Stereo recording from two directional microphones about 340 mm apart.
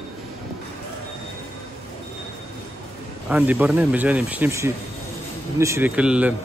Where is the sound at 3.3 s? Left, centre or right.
Centre.